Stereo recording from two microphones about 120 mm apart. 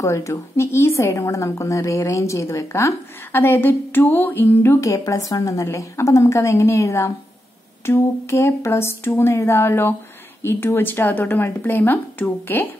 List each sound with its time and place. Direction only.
0.0 s a woman's voice: 25° left (ahead or behind)